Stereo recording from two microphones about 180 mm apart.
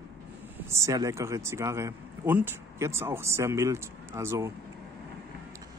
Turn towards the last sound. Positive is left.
turn(degrees=-15)  # may be behind; listen again after turning